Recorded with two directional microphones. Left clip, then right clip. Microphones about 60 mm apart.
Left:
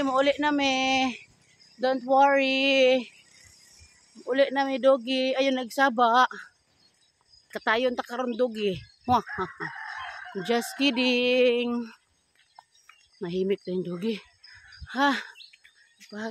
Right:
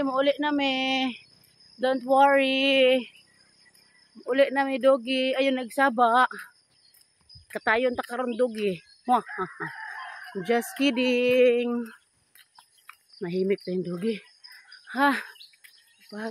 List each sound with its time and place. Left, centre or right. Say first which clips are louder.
0.0 s speech: left 1 dB; centre
0.8 s speech: left 2 dB; right
1.8 s speech: right 1 dB; right
4.3 s speech: right 1 dB; right
7.5 s speech: right 1 dB; right
8.0 s speech: right 1 dB; right
8.3 s speech: right 1 dB; right
9.0 s speech: even; centre
11.0 s a sound: right 2 dB; centre
13.2 s speech: right 1 dB; right
13.7 s a sound: right 1 dB; centre
14.9 s speech: right 1 dB; right
16.0 s a sound: even; right